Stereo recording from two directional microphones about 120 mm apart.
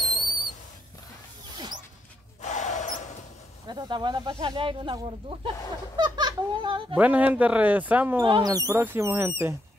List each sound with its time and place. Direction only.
2.4 s a sound: 80° left
3.6 s speech: 35° right (ahead or behind)
7.0 s speech: 15° right (ahead or behind)
8.2 s speech: 45° right (ahead or behind)
8.5 s speech: 30° right (ahead or behind)